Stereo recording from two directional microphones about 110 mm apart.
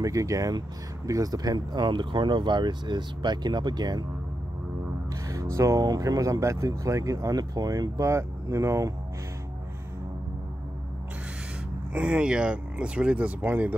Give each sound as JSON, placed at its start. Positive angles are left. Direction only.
{"t": 0.0, "sound": "speech", "side_deg": -30}
{"t": 5.3, "sound": "speech", "side_deg": -30}
{"t": 11.9, "sound": "speech", "side_deg": -10}